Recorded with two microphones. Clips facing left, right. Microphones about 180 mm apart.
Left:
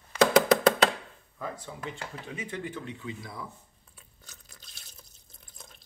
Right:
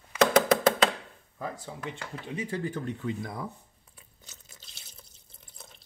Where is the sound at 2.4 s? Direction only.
35° right (ahead or behind).